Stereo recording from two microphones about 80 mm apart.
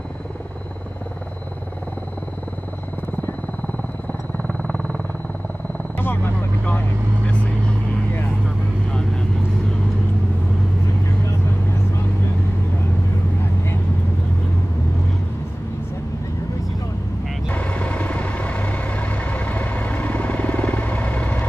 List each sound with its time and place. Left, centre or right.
4.1 s music: centre
5.9 s vehicle: left
17.5 s vehicle: centre